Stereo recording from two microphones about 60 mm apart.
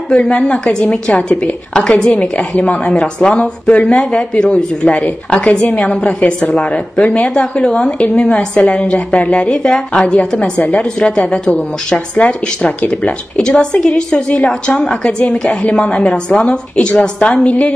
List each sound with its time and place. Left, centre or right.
0.1 s a woman's voice: centre
2.1 s a woman's voice: left